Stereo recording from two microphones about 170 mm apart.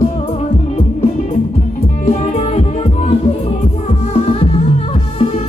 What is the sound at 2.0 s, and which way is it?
Music, 40° left (ahead or behind).